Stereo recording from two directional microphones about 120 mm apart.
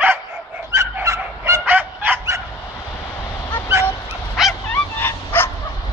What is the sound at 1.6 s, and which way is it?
Fowl, 15° right (ahead or behind).